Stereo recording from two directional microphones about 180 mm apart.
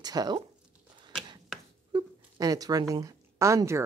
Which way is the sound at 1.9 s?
20° right (ahead or behind).